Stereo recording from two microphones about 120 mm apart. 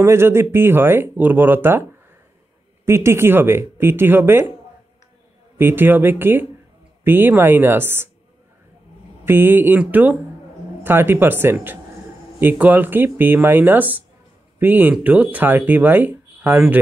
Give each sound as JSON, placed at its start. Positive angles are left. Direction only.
{"t": 0.0, "sound": "speech", "side_deg": -20}
{"t": 5.6, "sound": "speech", "side_deg": -15}
{"t": 9.2, "sound": "speech", "side_deg": -15}